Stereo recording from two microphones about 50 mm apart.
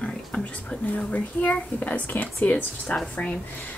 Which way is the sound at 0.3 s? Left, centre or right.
Left.